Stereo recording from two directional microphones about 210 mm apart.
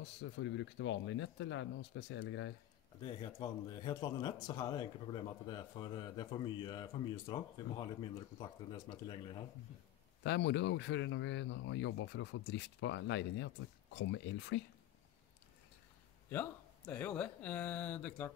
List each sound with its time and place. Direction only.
0.2 s speech: 60° left (ahead or behind)
3.0 s speech: 20° left (ahead or behind)
10.2 s speech: 55° left (ahead or behind)
16.3 s speech: 10° left (ahead or behind)